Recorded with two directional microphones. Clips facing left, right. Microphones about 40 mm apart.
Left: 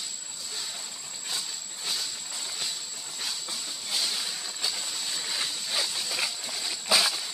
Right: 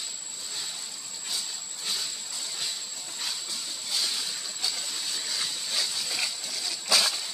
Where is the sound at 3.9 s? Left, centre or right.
Centre.